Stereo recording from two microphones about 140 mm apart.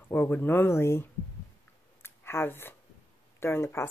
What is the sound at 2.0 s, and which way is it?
Clicking, 15° left (ahead or behind).